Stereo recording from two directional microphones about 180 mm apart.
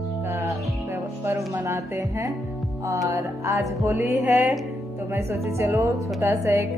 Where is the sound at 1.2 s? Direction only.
15° right (ahead or behind).